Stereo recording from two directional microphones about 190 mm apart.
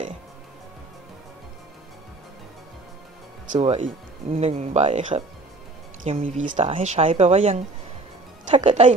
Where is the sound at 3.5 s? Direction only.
30° right (ahead or behind).